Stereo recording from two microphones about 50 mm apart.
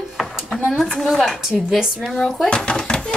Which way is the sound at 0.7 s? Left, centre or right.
Centre.